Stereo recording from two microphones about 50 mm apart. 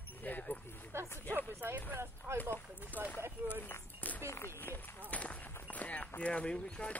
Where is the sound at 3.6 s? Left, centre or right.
Left.